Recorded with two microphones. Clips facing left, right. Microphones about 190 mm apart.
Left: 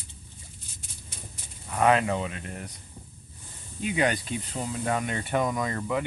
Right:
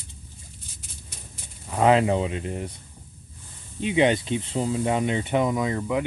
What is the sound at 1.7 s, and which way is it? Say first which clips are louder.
Speech: right 4 dB; 25° right (ahead or behind).